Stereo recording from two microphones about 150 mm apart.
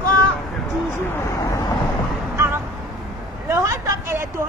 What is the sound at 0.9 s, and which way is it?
Speech, 20° left (ahead or behind).